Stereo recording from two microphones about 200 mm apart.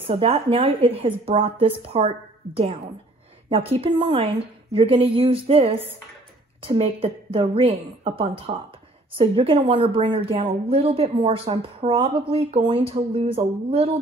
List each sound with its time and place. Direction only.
0.0 s speech: 30° right (ahead or behind)